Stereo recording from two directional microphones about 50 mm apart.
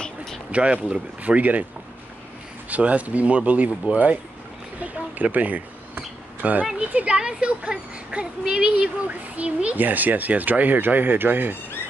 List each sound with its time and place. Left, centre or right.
0.0 s a sound: centre
0.5 s speech: right
2.7 s speech: right
7.1 s speech: centre; by 11.5 s right